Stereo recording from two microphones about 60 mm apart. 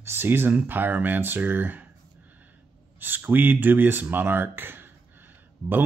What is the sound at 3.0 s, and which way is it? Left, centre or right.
Speech, right.